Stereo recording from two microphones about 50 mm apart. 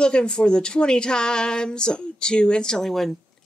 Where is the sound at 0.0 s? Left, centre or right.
Centre.